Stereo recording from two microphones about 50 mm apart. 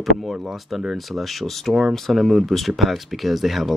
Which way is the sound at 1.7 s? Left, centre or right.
Centre.